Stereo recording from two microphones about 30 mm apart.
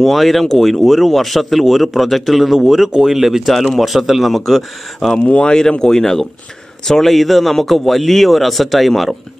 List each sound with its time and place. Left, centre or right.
0.0 s speech: centre
2.5 s speech: centre
5.2 s speech: left
5.5 s speech: left; by 9.1 s centre